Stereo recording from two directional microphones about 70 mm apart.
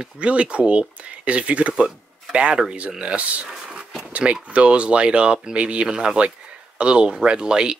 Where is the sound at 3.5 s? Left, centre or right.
Centre.